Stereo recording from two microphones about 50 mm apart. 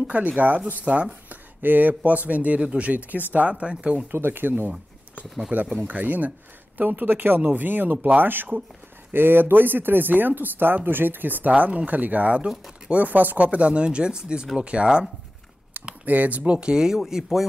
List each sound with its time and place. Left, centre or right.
0.0 s speech: right
4.1 s speech: right
5.5 s speech: right
12.4 s speech: centre
12.9 s speech: right
15.8 s typing: right
16.1 s speech: right; by 17.5 s centre